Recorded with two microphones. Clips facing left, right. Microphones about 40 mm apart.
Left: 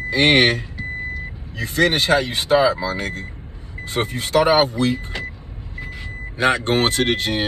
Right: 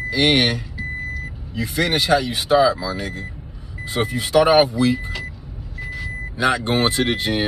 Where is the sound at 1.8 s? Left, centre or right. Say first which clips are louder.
Left 2 dB; left.